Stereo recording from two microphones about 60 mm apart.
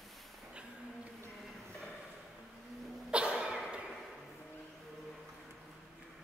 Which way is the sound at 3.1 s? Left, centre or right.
Centre.